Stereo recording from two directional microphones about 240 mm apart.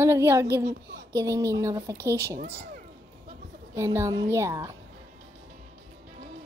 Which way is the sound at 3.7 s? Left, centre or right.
Centre.